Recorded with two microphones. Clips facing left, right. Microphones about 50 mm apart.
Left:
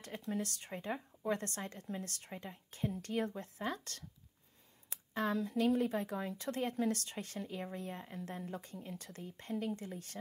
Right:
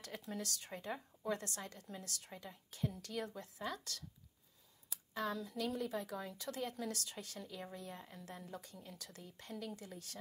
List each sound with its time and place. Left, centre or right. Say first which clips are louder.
0.3 s speech: left 6 dB; left